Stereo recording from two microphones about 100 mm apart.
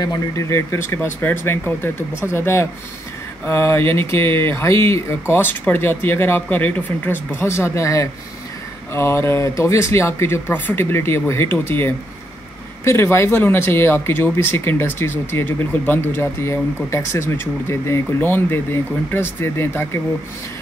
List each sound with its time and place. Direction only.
0.0 s speech: 35° left (ahead or behind)